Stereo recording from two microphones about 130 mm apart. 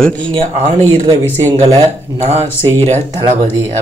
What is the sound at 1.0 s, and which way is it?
Speech, 25° right (ahead or behind).